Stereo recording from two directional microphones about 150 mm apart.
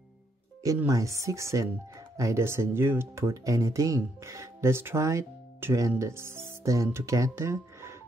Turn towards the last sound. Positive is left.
turn(degrees=-20)  # may be behind; listen again after turning